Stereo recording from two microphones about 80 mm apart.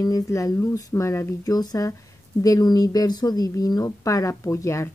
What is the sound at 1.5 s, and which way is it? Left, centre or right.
A woman's voice, left.